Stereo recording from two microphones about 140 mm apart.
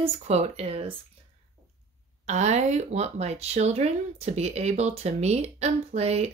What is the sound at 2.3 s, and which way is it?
Speech, 55° right (ahead or behind).